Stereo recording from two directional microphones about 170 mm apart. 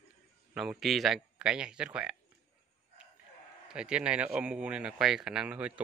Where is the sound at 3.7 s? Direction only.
5° right (ahead or behind).